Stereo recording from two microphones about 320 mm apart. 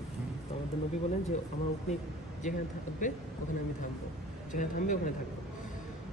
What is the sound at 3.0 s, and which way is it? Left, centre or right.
Speech, left.